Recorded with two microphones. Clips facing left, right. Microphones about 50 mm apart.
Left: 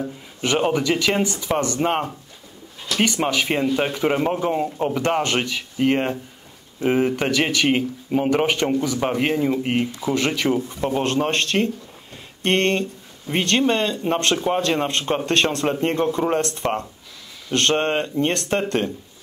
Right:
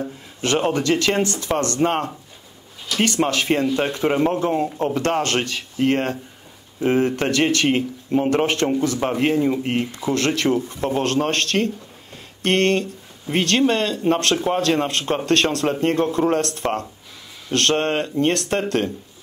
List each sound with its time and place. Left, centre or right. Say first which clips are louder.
0.4 s speech: even; centre
14.5 s speech: even; centre
14.9 s speech: right 2 dB; centre
16.6 s speech: even; centre
17.5 s speech: even; left